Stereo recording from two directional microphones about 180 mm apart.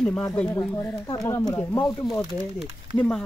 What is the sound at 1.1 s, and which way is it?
Speech, 20° left (ahead or behind).